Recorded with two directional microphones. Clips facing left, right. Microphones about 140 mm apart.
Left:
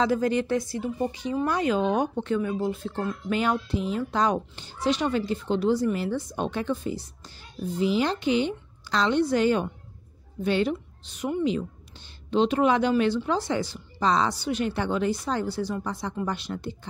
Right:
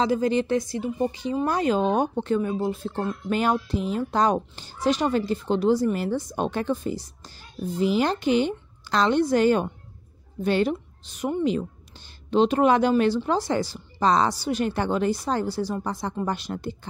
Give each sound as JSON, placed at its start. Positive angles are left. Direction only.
{"t": 0.0, "sound": "speech", "side_deg": -25}
{"t": 1.5, "sound": "a woman's voice", "side_deg": -35}
{"t": 12.3, "sound": "a woman's voice", "side_deg": -40}